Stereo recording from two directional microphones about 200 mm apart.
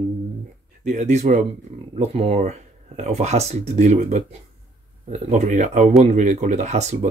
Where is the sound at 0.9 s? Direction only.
35° right (ahead or behind).